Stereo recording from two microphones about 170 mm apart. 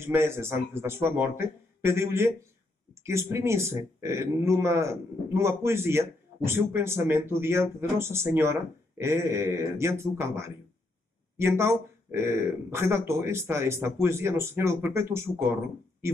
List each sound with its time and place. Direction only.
0.0 s a man's voice: 15° right (ahead or behind)